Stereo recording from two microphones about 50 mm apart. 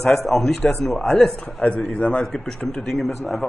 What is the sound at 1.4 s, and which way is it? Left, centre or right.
Speech, left.